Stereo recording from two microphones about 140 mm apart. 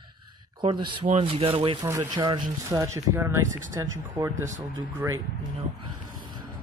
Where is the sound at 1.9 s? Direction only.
25° right (ahead or behind).